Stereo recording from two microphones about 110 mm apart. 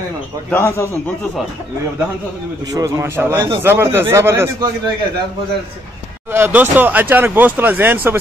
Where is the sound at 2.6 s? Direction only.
30° right (ahead or behind).